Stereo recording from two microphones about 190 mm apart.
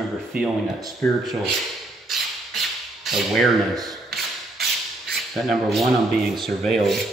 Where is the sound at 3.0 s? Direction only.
Centre (ahead or behind).